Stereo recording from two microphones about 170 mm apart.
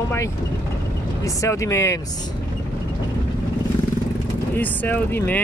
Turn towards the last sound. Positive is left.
turn(degrees=10)  # may be behind; listen again after turning